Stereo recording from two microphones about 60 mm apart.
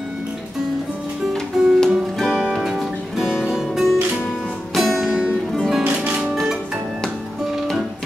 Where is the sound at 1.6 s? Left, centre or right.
Centre.